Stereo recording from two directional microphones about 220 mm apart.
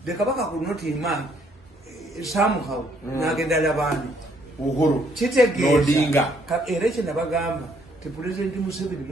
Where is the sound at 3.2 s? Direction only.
Centre (ahead or behind).